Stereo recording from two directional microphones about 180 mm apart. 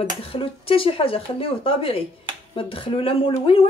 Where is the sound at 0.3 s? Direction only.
30° left (ahead or behind).